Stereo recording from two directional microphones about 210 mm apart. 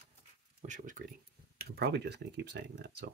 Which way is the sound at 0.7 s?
40° right (ahead or behind).